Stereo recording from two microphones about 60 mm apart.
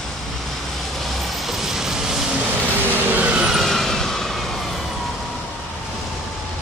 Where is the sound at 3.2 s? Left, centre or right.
Centre.